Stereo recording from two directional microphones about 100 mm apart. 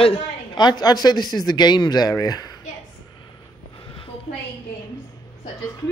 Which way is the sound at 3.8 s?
55° left (ahead or behind).